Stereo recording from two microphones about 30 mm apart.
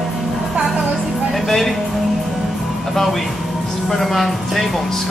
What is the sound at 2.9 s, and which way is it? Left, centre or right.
Speech, centre.